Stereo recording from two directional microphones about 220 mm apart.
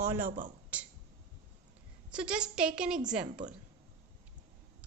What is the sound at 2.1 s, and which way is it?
A woman's voice, 5° right (ahead or behind).